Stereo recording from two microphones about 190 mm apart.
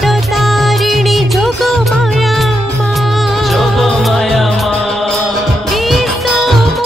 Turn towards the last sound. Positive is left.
turn(degrees=0)  # may be behind; listen again after turning